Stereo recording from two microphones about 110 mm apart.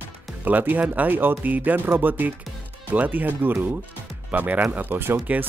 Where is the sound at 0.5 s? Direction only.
15° right (ahead or behind).